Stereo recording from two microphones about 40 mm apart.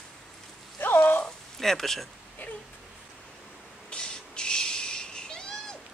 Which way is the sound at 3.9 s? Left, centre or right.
Left.